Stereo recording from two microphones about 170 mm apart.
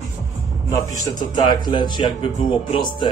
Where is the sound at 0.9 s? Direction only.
20° left (ahead or behind).